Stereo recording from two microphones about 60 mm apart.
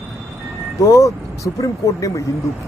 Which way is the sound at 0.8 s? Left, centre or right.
Left.